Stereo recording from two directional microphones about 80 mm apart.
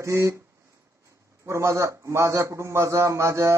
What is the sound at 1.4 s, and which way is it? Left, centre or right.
A man's voice, right.